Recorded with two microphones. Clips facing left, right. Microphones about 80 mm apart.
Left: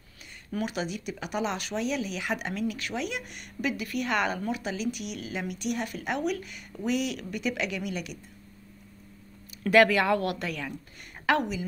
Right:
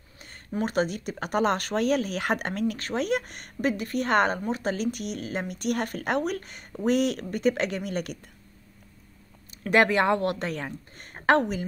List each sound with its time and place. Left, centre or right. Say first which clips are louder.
0.7 s speech: right 6 dB; right
9.7 s speech: even; right